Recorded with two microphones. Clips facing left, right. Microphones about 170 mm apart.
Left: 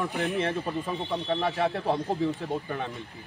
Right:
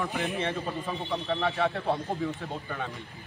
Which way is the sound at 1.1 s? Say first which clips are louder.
Even; 20° left (ahead or behind).